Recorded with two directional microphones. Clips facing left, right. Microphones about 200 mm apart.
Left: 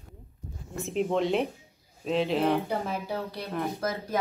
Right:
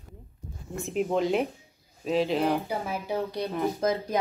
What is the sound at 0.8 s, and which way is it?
Speech, centre (ahead or behind).